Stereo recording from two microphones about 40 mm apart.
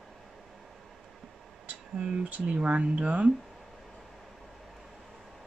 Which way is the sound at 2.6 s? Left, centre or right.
Right.